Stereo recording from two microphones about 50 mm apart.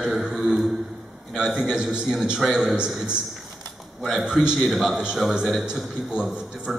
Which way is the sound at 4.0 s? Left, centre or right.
Centre.